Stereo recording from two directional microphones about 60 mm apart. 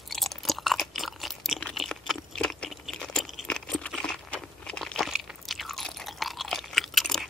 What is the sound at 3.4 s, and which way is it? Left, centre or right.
Crunch, centre.